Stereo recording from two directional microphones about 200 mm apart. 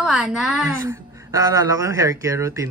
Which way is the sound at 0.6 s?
15° right (ahead or behind).